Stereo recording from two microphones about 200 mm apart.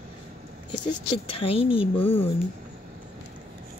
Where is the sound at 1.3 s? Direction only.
30° left (ahead or behind).